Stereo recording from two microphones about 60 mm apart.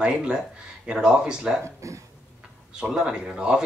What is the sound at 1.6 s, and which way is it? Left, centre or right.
Speech, right.